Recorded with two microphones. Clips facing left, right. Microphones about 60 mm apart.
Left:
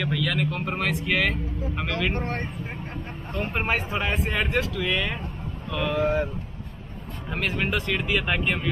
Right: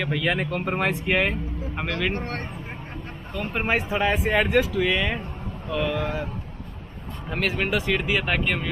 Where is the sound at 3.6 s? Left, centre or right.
Centre.